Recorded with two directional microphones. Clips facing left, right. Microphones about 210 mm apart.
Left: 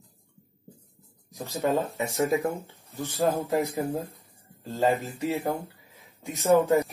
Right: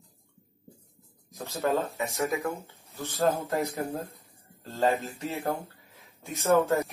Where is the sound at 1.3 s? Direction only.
15° left (ahead or behind).